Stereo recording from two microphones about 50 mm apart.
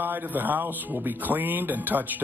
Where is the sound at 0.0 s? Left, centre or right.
Right.